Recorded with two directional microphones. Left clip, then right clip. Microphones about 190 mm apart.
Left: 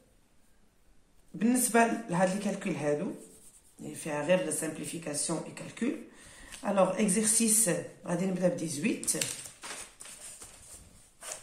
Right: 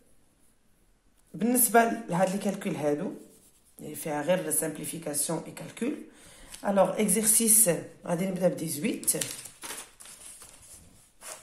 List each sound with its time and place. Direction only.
1.4 s speech: 40° right (ahead or behind)